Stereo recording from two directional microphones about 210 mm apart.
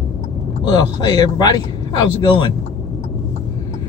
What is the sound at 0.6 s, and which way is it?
Speech, 20° left (ahead or behind).